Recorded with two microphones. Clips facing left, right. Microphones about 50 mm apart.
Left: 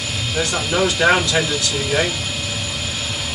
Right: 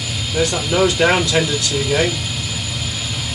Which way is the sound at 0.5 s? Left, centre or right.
Centre.